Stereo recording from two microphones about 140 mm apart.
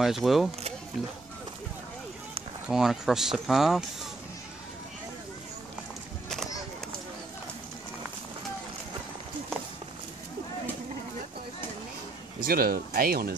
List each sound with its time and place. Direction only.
0.0 s speech: centre (ahead or behind)
2.7 s speech: centre (ahead or behind)
6.2 s a sound: 5° left (ahead or behind)
12.4 s speech: 90° right